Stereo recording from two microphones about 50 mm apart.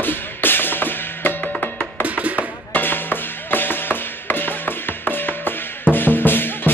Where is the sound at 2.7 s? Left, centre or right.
Left.